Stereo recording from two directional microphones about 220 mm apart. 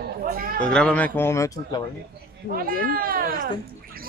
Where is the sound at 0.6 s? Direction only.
5° left (ahead or behind).